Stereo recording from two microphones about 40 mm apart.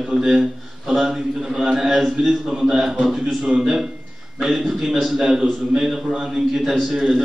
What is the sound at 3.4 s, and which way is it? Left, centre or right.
A man's voice, right.